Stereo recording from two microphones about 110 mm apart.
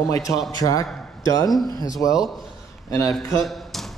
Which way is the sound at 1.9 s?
30° left (ahead or behind).